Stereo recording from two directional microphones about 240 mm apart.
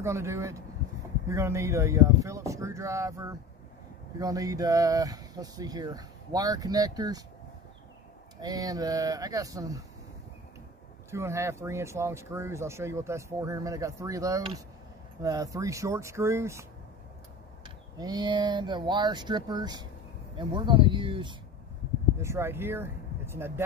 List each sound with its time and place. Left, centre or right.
0.0 s speech: centre
8.4 s speech: centre
11.1 s speech: centre
17.9 s speech: centre